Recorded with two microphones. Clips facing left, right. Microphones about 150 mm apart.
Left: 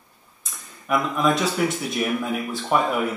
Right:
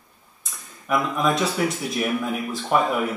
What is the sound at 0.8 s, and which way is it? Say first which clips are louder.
Speech: left 1 dB; centre (ahead or behind).